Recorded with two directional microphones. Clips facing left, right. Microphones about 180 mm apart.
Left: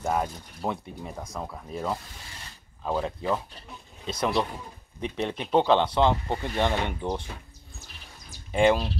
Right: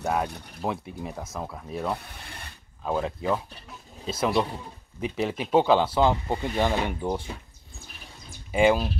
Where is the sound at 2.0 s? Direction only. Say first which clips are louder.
Right 3 dB; 60° right (ahead or behind).